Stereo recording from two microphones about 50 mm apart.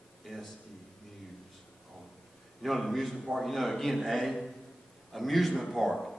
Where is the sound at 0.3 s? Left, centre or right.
Centre.